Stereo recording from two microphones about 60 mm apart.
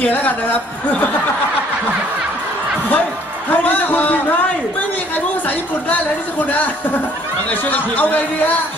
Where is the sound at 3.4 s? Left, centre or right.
Left.